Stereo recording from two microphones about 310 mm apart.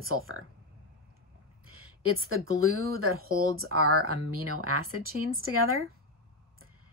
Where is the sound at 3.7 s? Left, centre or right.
Right.